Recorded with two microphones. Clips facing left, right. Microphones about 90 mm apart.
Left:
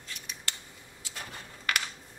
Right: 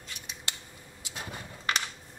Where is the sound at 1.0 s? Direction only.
20° right (ahead or behind).